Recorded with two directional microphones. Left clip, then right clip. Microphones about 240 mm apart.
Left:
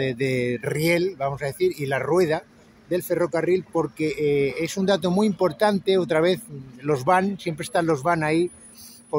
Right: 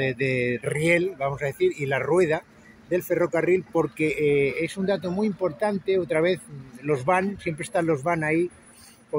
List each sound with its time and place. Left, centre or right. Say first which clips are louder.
0.0 s speech: even; centre